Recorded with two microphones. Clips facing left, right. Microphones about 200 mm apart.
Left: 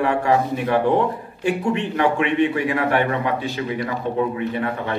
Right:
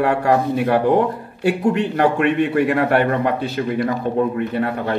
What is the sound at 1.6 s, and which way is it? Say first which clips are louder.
Speech: right 5 dB; 40° right (ahead or behind).